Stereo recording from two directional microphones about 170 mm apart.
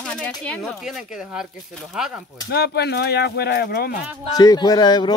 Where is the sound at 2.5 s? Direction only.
70° left (ahead or behind).